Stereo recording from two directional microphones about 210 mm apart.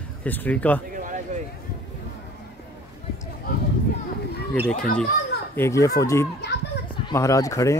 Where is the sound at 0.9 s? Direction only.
40° right (ahead or behind).